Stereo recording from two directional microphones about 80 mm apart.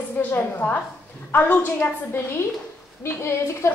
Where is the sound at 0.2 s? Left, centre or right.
Left.